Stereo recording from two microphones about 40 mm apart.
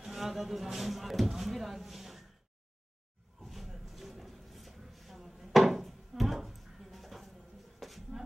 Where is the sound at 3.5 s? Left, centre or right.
Centre.